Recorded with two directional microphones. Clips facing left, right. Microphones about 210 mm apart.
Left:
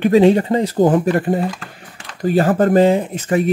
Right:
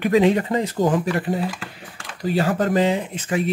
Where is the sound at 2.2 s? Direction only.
50° left (ahead or behind).